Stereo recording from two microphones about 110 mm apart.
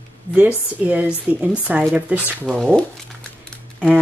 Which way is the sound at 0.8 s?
10° right (ahead or behind).